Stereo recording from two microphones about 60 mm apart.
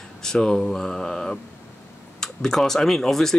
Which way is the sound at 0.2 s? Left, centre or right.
Centre.